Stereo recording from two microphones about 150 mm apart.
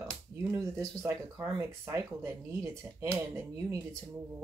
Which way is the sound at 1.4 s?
15° right (ahead or behind).